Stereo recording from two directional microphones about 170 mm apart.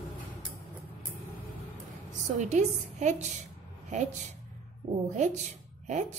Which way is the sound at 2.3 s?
45° right (ahead or behind).